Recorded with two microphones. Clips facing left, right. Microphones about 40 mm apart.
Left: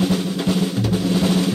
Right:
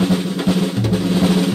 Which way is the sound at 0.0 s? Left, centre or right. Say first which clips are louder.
Right 2 dB; centre.